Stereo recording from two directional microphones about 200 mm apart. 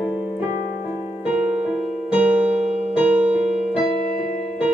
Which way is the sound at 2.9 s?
10° right (ahead or behind).